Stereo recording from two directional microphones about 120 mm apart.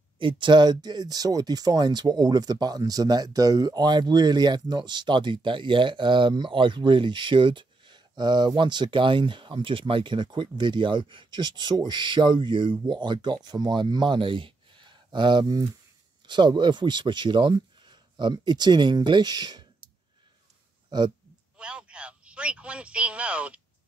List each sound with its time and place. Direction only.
0.2 s speech: 45° right (ahead or behind)
21.5 s speech: 10° right (ahead or behind)